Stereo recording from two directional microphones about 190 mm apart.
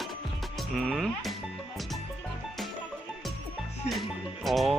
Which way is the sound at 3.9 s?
Centre (ahead or behind).